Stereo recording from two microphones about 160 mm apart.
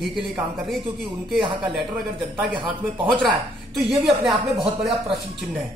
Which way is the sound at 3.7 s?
Centre (ahead or behind).